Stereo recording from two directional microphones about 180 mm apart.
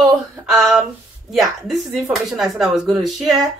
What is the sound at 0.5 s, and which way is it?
Speech, 5° right (ahead or behind).